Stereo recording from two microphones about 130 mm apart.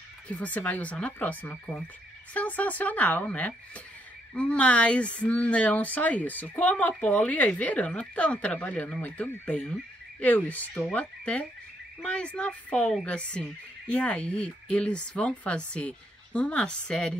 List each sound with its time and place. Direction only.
0.3 s speech: 10° left (ahead or behind)